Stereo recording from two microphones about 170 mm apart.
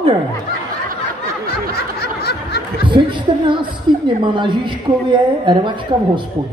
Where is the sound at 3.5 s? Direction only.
30° right (ahead or behind).